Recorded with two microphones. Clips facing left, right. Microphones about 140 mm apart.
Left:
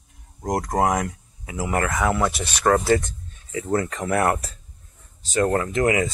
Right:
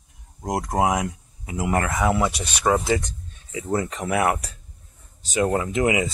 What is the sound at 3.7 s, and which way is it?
Speech, 15° right (ahead or behind).